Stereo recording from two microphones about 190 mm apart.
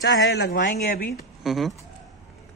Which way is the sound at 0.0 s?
65° left (ahead or behind).